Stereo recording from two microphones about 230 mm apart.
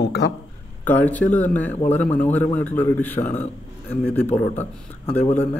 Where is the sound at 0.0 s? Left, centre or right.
Left.